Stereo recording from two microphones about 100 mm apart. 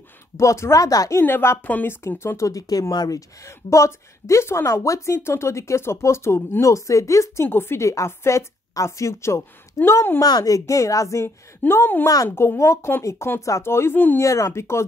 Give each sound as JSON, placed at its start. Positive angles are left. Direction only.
{"t": 0.4, "sound": "a woman's voice", "side_deg": 30}
{"t": 1.2, "sound": "speech", "side_deg": 25}
{"t": 10.2, "sound": "a woman's voice", "side_deg": 40}